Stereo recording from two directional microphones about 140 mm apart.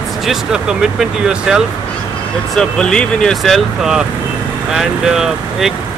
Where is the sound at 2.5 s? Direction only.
5° left (ahead or behind).